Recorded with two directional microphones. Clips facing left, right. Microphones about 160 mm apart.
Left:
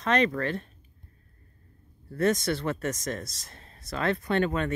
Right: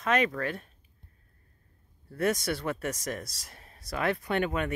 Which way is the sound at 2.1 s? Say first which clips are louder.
Left 3 dB; 10° right (ahead or behind).